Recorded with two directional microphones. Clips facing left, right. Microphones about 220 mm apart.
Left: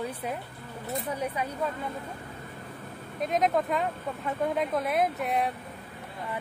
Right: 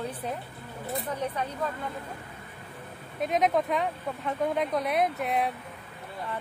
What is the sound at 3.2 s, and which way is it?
Speech, centre (ahead or behind).